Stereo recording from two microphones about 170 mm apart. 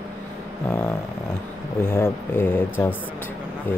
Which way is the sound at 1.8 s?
15° left (ahead or behind).